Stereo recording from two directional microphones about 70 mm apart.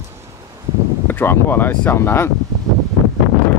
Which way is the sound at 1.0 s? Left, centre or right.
Left.